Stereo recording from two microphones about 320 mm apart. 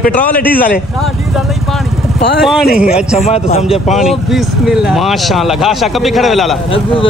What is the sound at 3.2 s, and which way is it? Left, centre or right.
Speech, centre.